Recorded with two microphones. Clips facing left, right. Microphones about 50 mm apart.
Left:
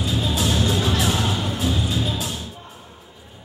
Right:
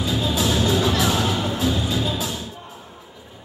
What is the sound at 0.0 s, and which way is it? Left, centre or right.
Music, right.